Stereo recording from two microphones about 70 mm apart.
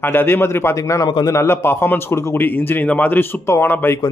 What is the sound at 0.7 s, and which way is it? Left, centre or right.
A man's voice, left.